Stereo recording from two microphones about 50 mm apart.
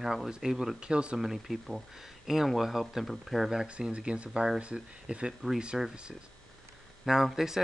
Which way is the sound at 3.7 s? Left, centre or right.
Right.